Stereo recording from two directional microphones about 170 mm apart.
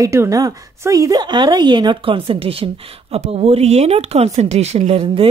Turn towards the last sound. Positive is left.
turn(degrees=-35)  # may be behind; listen again after turning